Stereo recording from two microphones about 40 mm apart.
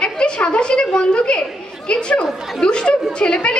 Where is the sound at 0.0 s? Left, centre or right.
Left.